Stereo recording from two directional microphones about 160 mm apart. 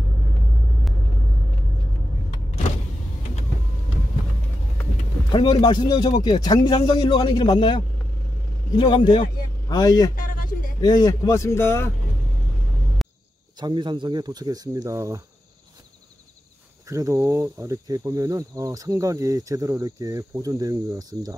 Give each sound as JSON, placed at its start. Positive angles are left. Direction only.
{"t": 5.3, "sound": "speech", "side_deg": 30}
{"t": 10.1, "sound": "a sound", "side_deg": 60}
{"t": 10.8, "sound": "speech", "side_deg": 25}
{"t": 13.0, "sound": "cricket", "side_deg": 0}
{"t": 13.6, "sound": "speech", "side_deg": -30}
{"t": 16.8, "sound": "speech", "side_deg": -20}